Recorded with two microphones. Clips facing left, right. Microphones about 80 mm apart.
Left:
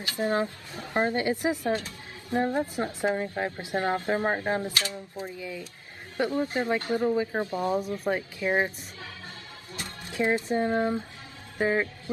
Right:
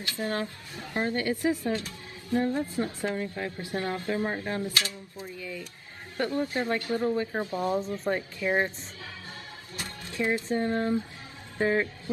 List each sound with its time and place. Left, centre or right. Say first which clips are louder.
0.0 s speech: left 4 dB; left
10.0 s speech: left 2 dB; left
11.5 s a sound: even; centre